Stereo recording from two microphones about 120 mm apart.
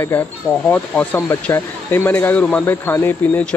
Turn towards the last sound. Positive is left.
turn(degrees=20)  # may be behind; listen again after turning